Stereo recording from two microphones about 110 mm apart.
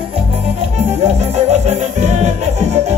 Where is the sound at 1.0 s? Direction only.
80° right.